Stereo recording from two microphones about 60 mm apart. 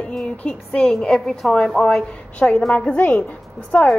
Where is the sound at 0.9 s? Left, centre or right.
Centre; by 3.8 s left.